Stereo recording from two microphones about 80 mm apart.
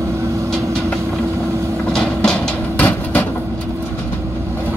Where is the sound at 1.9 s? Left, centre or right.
Centre.